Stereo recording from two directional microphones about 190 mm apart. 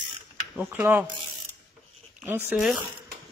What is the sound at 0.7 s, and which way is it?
Speech, 10° right (ahead or behind).